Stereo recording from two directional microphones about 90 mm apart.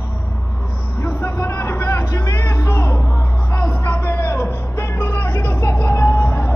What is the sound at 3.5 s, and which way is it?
Music, 25° left (ahead or behind).